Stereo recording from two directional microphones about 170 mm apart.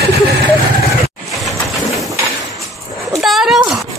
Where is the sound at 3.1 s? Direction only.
Centre (ahead or behind).